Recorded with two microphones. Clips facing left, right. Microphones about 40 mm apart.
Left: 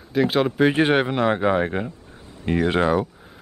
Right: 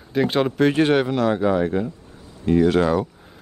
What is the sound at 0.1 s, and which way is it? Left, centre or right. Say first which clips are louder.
Speech: even; centre.